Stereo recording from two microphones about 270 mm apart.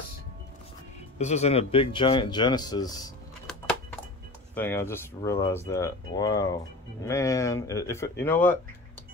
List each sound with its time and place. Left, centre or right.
1.1 s speech: left
4.6 s speech: centre